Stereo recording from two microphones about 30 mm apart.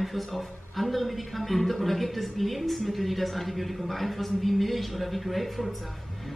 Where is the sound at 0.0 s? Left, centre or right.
Centre.